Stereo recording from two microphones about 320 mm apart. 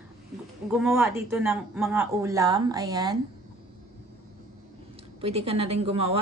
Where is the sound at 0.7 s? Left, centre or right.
Centre.